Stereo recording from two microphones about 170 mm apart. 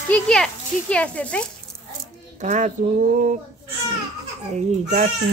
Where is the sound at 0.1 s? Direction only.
5° left (ahead or behind).